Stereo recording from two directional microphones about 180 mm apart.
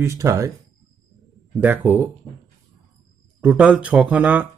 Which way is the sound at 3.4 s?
5° right (ahead or behind).